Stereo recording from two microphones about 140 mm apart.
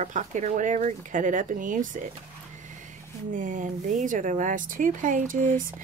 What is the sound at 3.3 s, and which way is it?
Speech, 65° right (ahead or behind).